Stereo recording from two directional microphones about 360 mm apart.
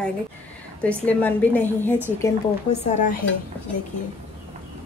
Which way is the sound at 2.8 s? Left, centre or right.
Centre.